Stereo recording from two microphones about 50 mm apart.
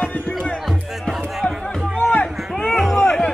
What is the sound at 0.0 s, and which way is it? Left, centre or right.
Music, left.